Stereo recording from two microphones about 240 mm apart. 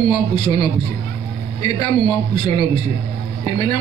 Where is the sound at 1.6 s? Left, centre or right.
Centre.